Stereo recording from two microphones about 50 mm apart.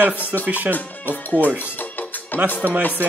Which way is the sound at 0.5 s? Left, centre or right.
Right.